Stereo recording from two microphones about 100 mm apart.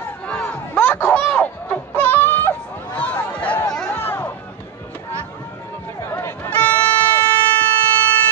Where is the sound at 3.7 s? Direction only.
20° left (ahead or behind).